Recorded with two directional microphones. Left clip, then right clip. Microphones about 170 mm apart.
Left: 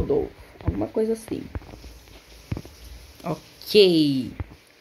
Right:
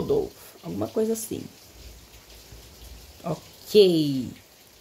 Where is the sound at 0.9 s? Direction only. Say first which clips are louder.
Left 1 dB; 5° right (ahead or behind).